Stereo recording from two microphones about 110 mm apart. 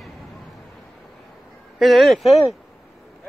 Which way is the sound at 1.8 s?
Centre (ahead or behind).